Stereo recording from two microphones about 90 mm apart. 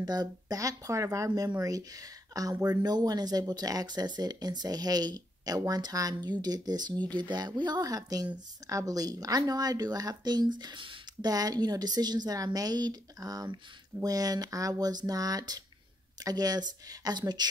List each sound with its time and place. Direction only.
0.0 s speech: 50° right (ahead or behind)
11.2 s speech: 45° right (ahead or behind)